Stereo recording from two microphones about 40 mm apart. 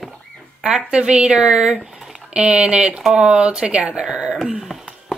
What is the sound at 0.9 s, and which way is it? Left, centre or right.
Speech, right.